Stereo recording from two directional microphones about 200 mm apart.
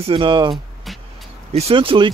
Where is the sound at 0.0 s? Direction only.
25° right (ahead or behind).